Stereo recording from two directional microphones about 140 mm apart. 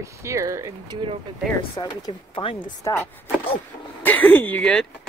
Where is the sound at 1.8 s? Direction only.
35° left (ahead or behind).